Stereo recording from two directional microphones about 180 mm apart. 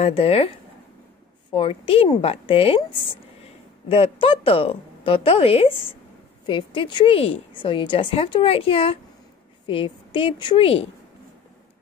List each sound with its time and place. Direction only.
0.0 s a woman's voice: 35° left (ahead or behind)
1.5 s a woman's voice: 30° left (ahead or behind)